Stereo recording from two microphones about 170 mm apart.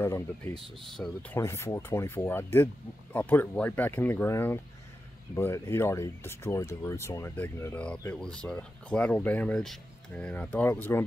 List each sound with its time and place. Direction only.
1.0 s speech: 10° left (ahead or behind)